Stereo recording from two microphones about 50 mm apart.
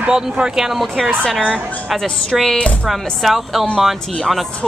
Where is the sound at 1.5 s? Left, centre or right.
Centre.